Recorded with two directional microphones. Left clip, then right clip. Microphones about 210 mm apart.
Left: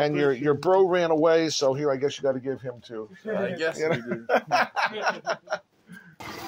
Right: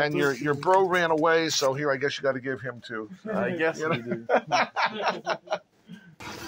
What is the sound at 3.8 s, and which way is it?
Speech, 20° left (ahead or behind).